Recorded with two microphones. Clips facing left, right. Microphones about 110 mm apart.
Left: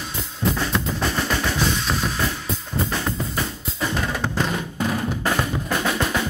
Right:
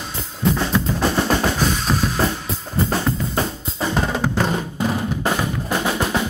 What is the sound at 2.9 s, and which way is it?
Drum kit, 35° right (ahead or behind).